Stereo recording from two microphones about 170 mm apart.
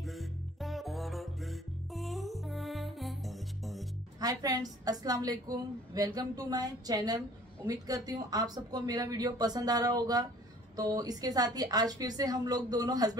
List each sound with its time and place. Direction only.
0.0 s music: centre (ahead or behind)
4.2 s a woman's voice: 20° right (ahead or behind)